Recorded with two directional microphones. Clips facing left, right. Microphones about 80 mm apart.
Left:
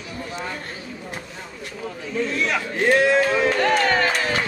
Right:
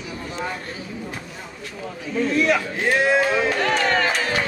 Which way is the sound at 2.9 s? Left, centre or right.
Centre.